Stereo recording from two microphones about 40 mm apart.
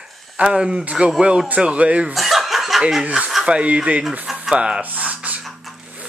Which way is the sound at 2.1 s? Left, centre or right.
Centre.